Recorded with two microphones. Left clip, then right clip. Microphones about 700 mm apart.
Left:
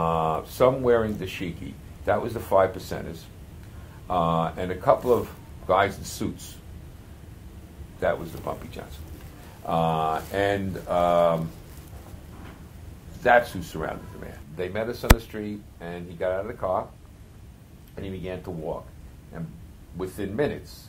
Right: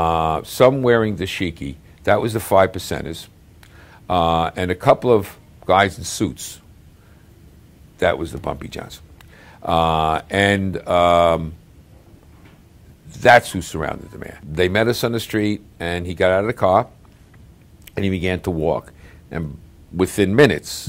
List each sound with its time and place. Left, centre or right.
0.0 s speech: right
8.0 s speech: right
9.7 s speech: right
13.2 s speech: right
14.5 s speech: right
17.9 s speech: right
20.0 s speech: right